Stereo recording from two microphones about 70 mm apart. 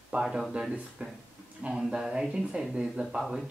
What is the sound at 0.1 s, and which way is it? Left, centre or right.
Speech, centre.